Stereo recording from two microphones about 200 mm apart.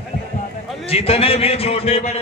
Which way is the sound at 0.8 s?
30° left (ahead or behind).